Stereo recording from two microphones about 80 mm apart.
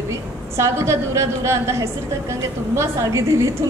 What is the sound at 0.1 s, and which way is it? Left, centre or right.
A woman's voice, right.